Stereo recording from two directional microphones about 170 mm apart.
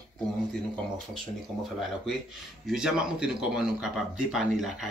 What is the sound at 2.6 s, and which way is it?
Speech, 5° right (ahead or behind).